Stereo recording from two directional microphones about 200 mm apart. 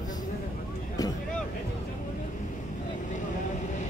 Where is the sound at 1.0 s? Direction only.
20° left (ahead or behind).